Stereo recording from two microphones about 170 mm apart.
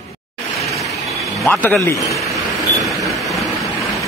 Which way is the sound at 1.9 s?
20° left (ahead or behind).